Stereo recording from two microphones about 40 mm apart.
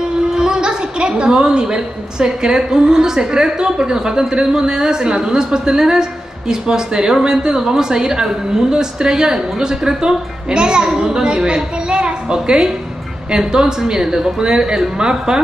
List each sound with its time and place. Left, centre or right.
0.3 s a woman's voice: centre